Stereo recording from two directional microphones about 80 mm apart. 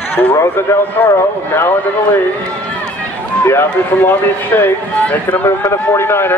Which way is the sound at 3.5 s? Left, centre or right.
Left.